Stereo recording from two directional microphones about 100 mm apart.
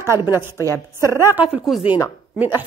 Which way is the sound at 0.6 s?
35° left (ahead or behind).